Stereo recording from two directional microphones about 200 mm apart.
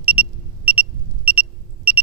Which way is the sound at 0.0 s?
90° left.